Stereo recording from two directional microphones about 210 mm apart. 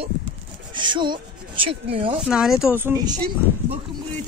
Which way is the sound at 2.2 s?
Centre (ahead or behind).